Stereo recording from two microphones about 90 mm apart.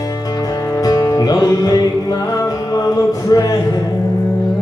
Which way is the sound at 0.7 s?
45° left (ahead or behind).